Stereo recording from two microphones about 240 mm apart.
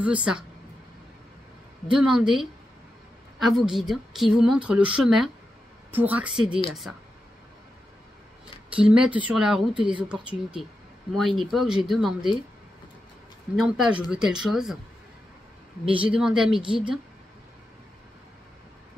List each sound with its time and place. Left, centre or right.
0.0 s a woman's voice: centre
1.9 s a woman's voice: centre
8.7 s a woman's voice: centre
13.6 s a woman's voice: centre
15.8 s a woman's voice: right
16.1 s a woman's voice: centre
16.6 s a woman's voice: right